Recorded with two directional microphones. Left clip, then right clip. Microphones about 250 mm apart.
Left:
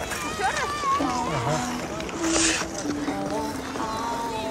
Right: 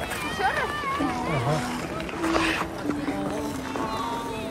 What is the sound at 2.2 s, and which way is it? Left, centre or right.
Speech, right.